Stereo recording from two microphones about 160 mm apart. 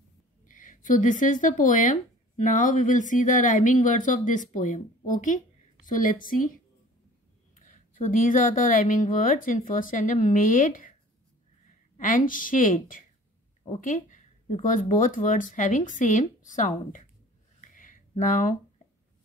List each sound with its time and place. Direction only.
0.5 s speech: 55° left (ahead or behind)
7.5 s speech: 55° left (ahead or behind)
12.0 s speech: 55° left (ahead or behind)
17.6 s a sound: 55° left (ahead or behind)